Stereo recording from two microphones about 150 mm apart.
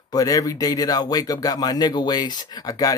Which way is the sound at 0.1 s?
25° left (ahead or behind).